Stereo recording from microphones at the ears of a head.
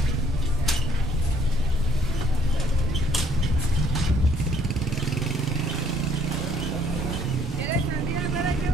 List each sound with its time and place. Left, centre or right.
5.4 s vehicle: right
7.6 s vehicle: right